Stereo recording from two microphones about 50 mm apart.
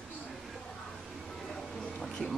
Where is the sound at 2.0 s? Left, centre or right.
Centre.